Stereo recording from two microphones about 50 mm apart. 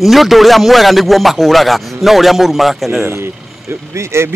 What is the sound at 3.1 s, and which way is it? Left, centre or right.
Speech, right.